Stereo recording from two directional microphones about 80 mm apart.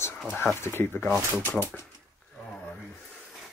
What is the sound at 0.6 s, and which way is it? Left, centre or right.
Speech, left.